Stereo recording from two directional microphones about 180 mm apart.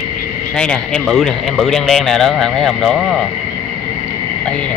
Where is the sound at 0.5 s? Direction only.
5° left (ahead or behind).